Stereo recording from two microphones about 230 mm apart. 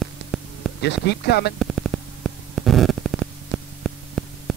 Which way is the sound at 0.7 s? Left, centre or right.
Left.